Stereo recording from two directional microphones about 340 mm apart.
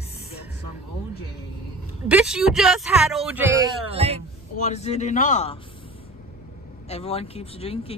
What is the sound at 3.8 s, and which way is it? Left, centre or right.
Speech, centre.